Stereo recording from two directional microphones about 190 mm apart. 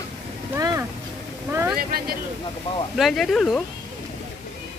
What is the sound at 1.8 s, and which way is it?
Speech, 50° right (ahead or behind).